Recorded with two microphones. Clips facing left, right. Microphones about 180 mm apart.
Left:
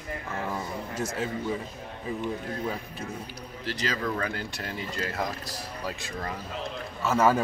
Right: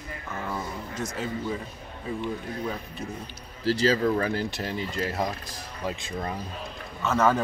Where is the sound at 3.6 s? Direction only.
30° right (ahead or behind).